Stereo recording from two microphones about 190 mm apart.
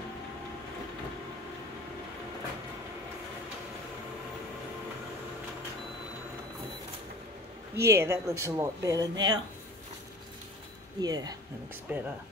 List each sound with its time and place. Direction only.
7.7 s speech: 15° right (ahead or behind)
11.0 s speech: 20° right (ahead or behind)
11.9 s speech: 10° right (ahead or behind)